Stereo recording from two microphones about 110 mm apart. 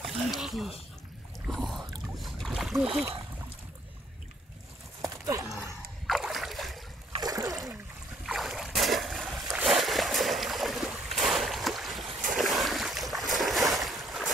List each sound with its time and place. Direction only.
0.0 s a sound: centre (ahead or behind)
1.5 s boat: centre (ahead or behind)
5.0 s horse: 30° right (ahead or behind)
6.0 s boat: centre (ahead or behind)
7.2 s splash: 35° right (ahead or behind)
8.3 s boat: centre (ahead or behind)